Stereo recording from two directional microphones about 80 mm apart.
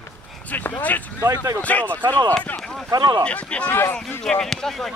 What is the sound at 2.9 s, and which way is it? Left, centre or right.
Speech, right.